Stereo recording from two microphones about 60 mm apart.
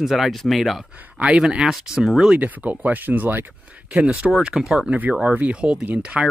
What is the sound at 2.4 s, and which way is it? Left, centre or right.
Speech, right.